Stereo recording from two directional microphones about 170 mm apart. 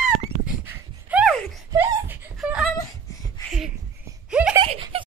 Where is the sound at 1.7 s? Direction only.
20° right (ahead or behind).